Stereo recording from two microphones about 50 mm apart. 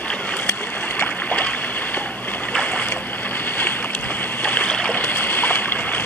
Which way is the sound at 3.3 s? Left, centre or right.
Left.